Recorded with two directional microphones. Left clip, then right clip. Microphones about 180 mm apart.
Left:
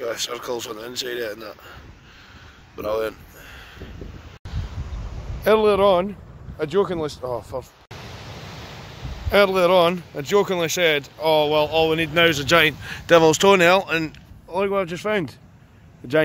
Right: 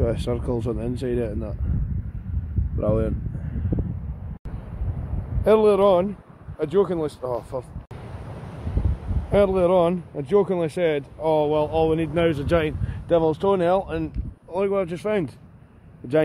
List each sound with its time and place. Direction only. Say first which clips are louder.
0.1 s speech: even; centre (ahead or behind)
5.4 s speech: even; centre (ahead or behind)
7.2 s speech: even; 20° left (ahead or behind)
9.3 s speech: left 2 dB; 5° left (ahead or behind)